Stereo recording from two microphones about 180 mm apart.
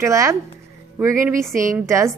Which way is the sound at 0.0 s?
15° right (ahead or behind).